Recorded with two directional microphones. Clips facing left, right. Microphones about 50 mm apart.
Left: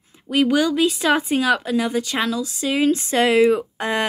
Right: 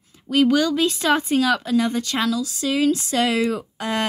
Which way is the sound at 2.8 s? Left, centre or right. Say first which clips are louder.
Left 4 dB; left.